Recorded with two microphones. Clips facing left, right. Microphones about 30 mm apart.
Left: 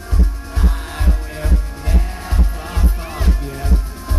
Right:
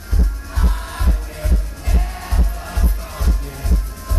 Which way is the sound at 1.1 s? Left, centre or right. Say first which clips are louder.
Left 2 dB; left.